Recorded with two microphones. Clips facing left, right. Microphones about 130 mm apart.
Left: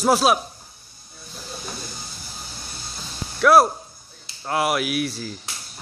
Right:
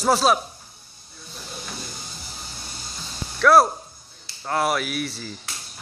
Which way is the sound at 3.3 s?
5° left (ahead or behind).